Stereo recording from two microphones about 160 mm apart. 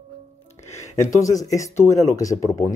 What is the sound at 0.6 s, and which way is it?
Music, 50° left (ahead or behind).